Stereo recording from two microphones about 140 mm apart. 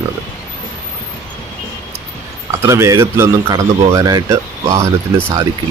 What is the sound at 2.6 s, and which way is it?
Speech, 20° right (ahead or behind).